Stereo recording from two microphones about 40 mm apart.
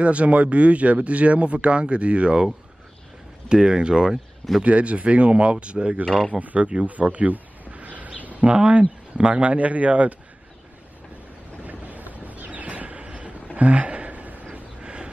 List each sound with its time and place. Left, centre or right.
0.0 s speech: right
3.4 s speech: right
4.6 s speech: right
6.7 s a sound: right
8.6 s speech: right
11.6 s vehicle: right
13.6 s a sound: right